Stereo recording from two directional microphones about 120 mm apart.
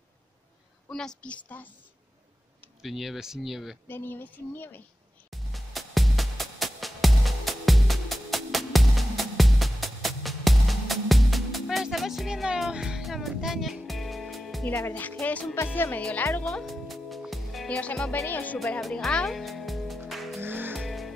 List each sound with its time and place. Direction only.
0.8 s speech: 5° left (ahead or behind)
2.8 s speech: centre (ahead or behind)
3.8 s speech: 15° left (ahead or behind)
5.3 s music: centre (ahead or behind)
14.8 s speech: 15° left (ahead or behind)
16.4 s music: centre (ahead or behind)
17.6 s speech: 10° left (ahead or behind)
18.6 s music: centre (ahead or behind)
20.3 s music: 15° right (ahead or behind)
20.7 s vehicle: centre (ahead or behind)